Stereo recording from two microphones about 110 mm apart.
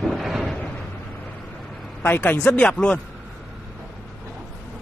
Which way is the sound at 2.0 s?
15° left (ahead or behind).